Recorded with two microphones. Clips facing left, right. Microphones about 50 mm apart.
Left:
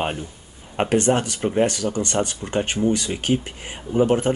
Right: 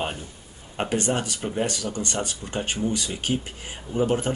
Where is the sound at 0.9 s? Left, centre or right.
Left.